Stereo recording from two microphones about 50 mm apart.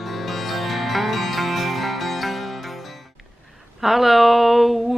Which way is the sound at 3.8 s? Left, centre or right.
Centre.